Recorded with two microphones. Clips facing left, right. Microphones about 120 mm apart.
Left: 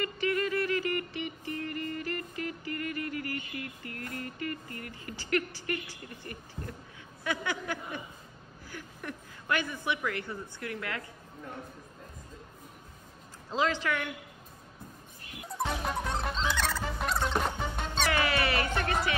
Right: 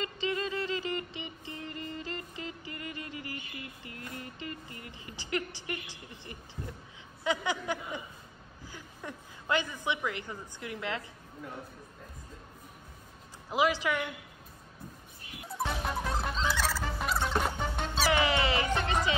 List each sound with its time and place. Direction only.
0.0 s music: 20° right (ahead or behind)
6.3 s a sound: 20° right (ahead or behind)
8.6 s a woman's voice: 15° right (ahead or behind)
13.5 s a sound: 15° right (ahead or behind)
15.6 s music: 5° right (ahead or behind)
18.1 s music: 20° right (ahead or behind)